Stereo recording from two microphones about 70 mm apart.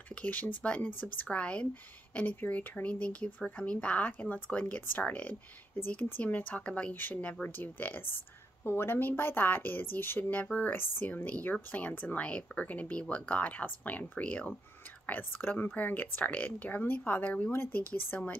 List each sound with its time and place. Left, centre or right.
0.1 s speech: left